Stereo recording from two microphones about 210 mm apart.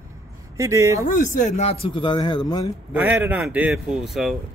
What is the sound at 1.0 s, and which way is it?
Speech, 35° left (ahead or behind).